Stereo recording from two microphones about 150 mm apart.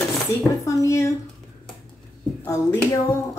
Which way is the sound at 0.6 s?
20° left (ahead or behind).